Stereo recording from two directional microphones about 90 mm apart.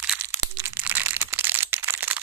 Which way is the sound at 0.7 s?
20° right (ahead or behind).